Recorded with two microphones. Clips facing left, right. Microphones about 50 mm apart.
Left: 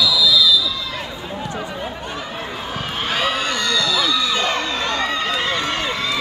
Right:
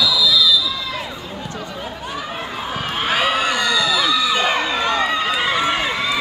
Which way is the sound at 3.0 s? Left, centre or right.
Centre.